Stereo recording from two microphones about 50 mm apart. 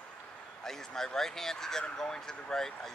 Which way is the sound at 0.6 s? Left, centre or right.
Centre.